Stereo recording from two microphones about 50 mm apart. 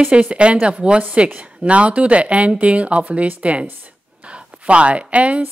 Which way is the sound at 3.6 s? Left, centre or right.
Right.